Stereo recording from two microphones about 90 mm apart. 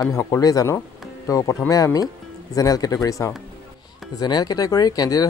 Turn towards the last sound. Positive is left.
turn(degrees=45)  # may be behind; listen again after turning